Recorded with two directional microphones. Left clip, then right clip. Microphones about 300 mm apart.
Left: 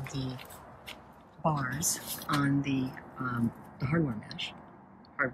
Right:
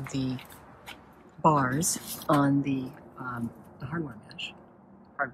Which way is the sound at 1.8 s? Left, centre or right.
Left.